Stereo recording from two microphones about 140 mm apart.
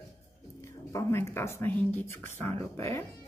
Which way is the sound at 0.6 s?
20° left (ahead or behind).